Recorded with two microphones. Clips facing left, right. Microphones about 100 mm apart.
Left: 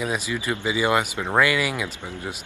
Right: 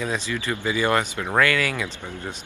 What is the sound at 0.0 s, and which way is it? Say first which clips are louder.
Speech: left 1 dB; 15° left (ahead or behind).